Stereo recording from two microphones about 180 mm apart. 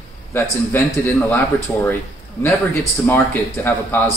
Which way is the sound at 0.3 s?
15° left (ahead or behind).